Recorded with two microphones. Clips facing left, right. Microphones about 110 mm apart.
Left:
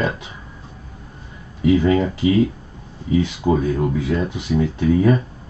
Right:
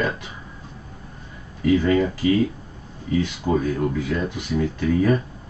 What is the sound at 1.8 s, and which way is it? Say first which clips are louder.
Speech: left 2 dB; 25° left (ahead or behind).